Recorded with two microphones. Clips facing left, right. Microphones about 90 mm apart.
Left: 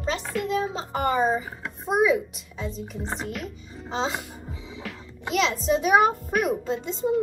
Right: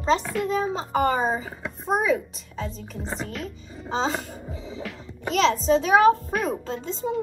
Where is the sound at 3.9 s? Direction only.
35° right (ahead or behind).